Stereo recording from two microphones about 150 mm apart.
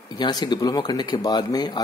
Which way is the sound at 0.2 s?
25° left (ahead or behind).